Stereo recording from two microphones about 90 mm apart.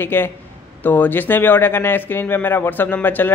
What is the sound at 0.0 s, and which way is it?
A man's voice, 25° left (ahead or behind).